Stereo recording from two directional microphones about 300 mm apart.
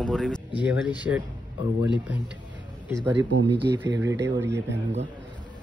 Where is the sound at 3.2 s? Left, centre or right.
Right.